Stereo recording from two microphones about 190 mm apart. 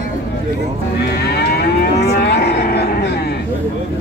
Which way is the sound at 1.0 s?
60° left (ahead or behind).